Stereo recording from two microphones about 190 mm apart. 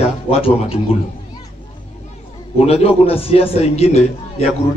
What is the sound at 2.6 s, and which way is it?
A man's voice, 30° left (ahead or behind).